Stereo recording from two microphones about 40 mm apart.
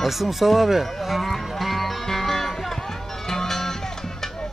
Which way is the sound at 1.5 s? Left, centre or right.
Centre.